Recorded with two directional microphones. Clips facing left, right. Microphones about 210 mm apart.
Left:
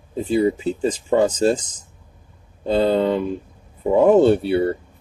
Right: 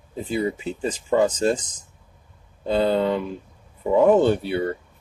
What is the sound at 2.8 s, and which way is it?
Speech, 25° left (ahead or behind).